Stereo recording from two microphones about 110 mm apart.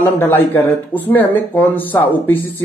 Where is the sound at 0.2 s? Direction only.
20° left (ahead or behind).